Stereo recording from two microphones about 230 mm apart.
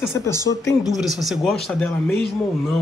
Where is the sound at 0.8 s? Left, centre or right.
Centre.